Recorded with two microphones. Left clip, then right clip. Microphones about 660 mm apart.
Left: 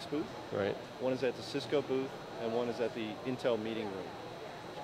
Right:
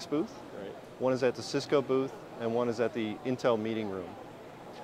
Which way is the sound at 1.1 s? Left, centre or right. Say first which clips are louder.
Right 5 dB; right.